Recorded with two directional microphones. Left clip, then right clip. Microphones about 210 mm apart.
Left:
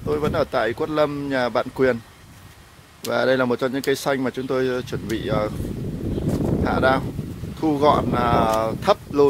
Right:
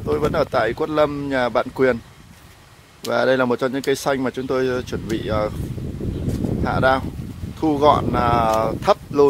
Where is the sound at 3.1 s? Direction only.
5° right (ahead or behind).